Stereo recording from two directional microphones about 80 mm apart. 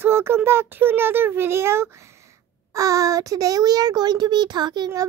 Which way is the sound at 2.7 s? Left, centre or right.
Right.